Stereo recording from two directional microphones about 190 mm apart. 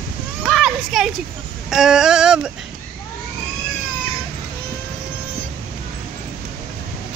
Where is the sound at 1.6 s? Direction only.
5° right (ahead or behind).